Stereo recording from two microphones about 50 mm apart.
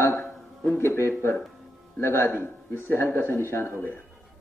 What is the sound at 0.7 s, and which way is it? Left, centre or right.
A man's voice, left.